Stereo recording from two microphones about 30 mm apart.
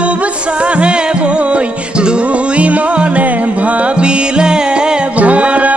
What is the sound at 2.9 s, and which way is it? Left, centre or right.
Music, right.